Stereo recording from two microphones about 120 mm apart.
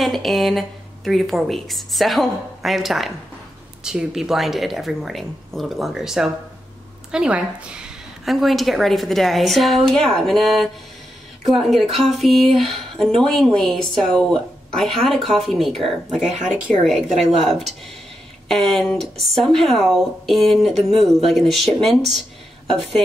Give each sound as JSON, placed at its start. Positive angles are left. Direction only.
{"t": 0.0, "sound": "speech", "side_deg": 0}
{"t": 16.2, "sound": "speech", "side_deg": -85}
{"t": 17.2, "sound": "speech", "side_deg": 0}